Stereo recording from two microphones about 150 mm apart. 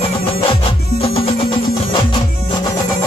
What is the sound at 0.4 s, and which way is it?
Music, 40° left (ahead or behind).